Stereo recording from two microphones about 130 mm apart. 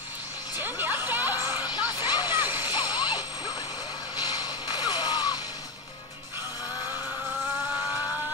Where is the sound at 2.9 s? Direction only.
35° left (ahead or behind).